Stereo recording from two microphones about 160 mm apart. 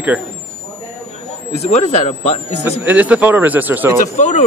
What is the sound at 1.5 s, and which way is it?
Speech, 45° left (ahead or behind).